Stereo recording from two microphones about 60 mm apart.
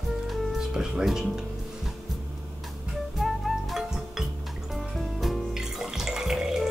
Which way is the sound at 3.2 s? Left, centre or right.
Centre.